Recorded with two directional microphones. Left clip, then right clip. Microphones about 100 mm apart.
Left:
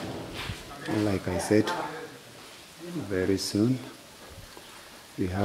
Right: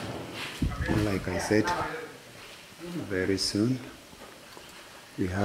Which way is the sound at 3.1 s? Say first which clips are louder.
Left 1 dB; 30° left (ahead or behind).